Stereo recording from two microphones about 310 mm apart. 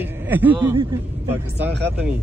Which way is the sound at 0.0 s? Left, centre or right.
Centre.